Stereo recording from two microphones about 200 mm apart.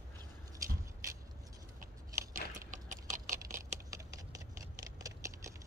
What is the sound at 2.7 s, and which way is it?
Tick-tock, 40° right (ahead or behind).